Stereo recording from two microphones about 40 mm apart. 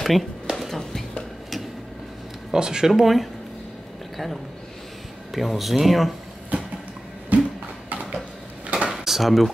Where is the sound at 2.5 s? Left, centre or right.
Centre.